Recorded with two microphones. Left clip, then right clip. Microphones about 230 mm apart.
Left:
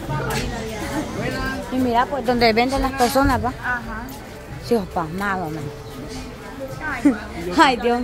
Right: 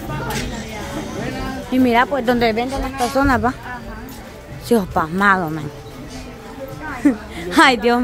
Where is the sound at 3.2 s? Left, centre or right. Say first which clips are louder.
Right 3 dB; centre.